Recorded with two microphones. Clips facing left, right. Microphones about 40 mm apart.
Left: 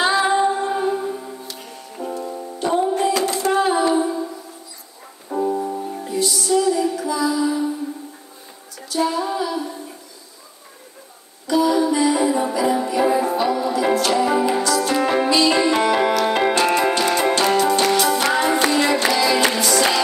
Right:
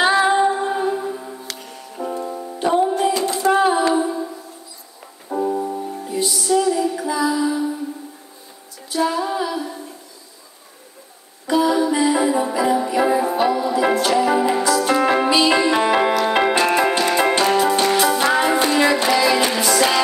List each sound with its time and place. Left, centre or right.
0.0 s music: centre
3.1 s a sound: left
3.3 s a sound: centre
3.9 s a capella: centre
5.3 s music: centre
7.4 s music: centre
8.8 s female singing: centre
11.4 s music: centre
13.7 s music: right
15.6 s music: centre